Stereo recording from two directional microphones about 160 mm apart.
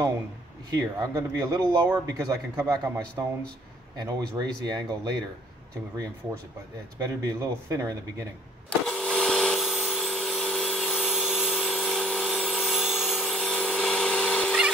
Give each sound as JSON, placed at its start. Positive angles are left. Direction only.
{"t": 0.7, "sound": "speech", "side_deg": -20}
{"t": 4.0, "sound": "speech", "side_deg": -25}
{"t": 7.0, "sound": "speech", "side_deg": -20}
{"t": 8.6, "sound": "a sound", "side_deg": 5}